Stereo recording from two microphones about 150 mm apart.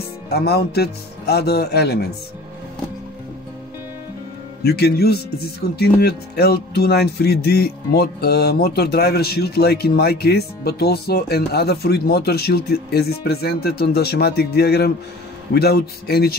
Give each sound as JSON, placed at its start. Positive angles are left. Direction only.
{"t": 0.3, "sound": "speech", "side_deg": 90}
{"t": 4.6, "sound": "speech", "side_deg": 90}